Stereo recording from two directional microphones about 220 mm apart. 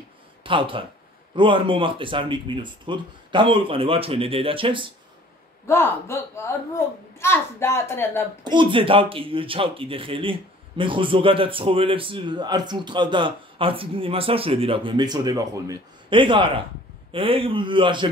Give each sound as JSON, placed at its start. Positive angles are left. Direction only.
{"t": 0.4, "sound": "a man's voice", "side_deg": -25}
{"t": 5.7, "sound": "a woman's voice", "side_deg": 10}
{"t": 8.5, "sound": "a man's voice", "side_deg": -20}